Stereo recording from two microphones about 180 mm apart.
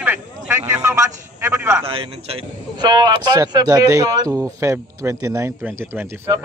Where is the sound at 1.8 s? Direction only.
30° right (ahead or behind); by 6.1 s 15° right (ahead or behind).